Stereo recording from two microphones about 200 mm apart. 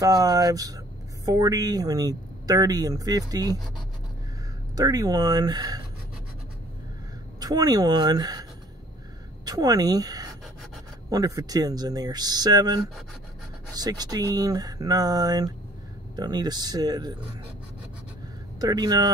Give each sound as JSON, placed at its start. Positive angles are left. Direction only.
{"t": 0.0, "sound": "speech", "side_deg": -15}
{"t": 4.7, "sound": "speech", "side_deg": -20}
{"t": 7.3, "sound": "a woman's voice", "side_deg": -20}
{"t": 18.6, "sound": "speech", "side_deg": -20}